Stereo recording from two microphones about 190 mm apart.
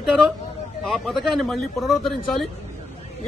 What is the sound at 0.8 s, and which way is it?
A man's voice, centre (ahead or behind).